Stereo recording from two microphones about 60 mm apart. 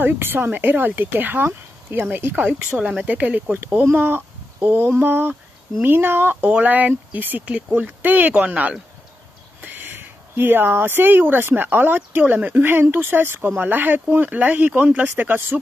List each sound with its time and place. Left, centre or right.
0.0 s speech: right
2.7 s speech: centre
3.8 s speech: right
9.6 s speech: right